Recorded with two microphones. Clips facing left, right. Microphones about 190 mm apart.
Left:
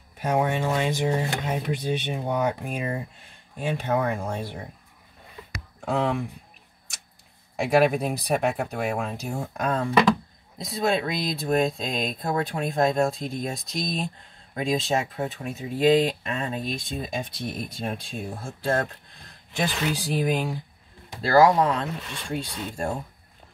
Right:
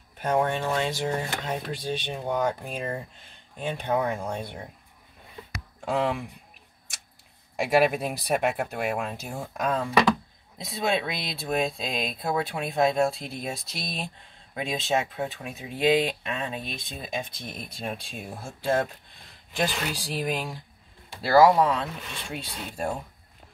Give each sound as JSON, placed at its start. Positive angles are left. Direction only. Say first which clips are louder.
{"t": 0.2, "sound": "speech", "louder": "left 1 dB", "side_deg": 15}
{"t": 2.1, "sound": "speech", "louder": "left 1 dB", "side_deg": 10}
{"t": 5.9, "sound": "speech", "louder": "left 1 dB", "side_deg": -5}
{"t": 7.5, "sound": "speech", "louder": "left 2 dB", "side_deg": -5}
{"t": 19.5, "sound": "speech", "louder": "left 2 dB", "side_deg": 0}